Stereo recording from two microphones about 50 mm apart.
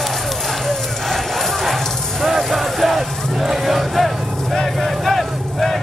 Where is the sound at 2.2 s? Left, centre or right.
Centre.